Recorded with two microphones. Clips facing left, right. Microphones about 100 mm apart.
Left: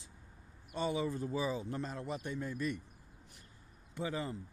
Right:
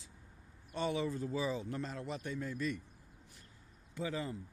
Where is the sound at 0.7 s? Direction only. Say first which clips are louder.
Left 1 dB; 5° left (ahead or behind).